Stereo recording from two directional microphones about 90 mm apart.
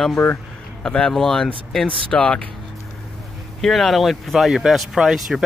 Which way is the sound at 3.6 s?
Centre (ahead or behind).